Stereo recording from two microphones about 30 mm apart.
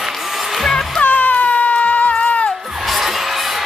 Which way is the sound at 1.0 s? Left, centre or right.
Left.